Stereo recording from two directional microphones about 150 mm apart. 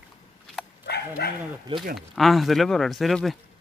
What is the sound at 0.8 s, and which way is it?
Dog, 90° left.